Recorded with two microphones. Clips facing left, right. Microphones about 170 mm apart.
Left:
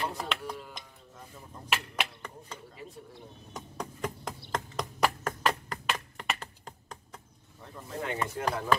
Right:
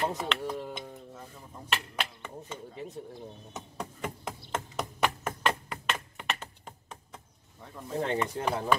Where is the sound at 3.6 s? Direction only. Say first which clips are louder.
Left 2 dB; 5° right (ahead or behind).